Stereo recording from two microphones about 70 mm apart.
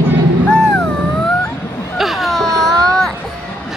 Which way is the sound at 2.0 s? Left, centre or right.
Centre.